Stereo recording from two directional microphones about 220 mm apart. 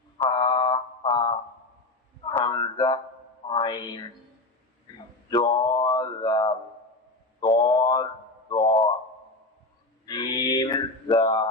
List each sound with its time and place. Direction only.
0.2 s mantra: 20° left (ahead or behind)
2.2 s a sound: 20° left (ahead or behind)
3.4 s music: 20° left (ahead or behind)
5.3 s mantra: 20° left (ahead or behind)
7.3 s a sound: 20° left (ahead or behind)
10.0 s mantra: 20° left (ahead or behind)